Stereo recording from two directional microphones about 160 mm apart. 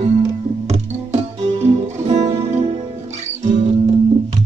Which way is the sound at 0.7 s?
45° right (ahead or behind).